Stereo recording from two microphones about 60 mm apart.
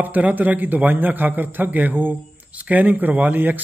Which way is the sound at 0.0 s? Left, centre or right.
Right.